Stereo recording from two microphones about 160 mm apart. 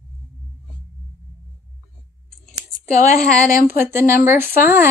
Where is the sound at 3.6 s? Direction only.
15° right (ahead or behind).